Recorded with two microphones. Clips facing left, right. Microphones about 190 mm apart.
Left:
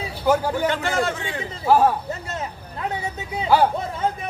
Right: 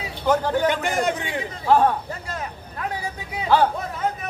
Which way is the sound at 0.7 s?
15° right (ahead or behind).